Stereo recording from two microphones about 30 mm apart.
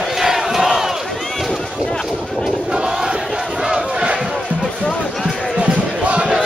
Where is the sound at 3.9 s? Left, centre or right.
Right.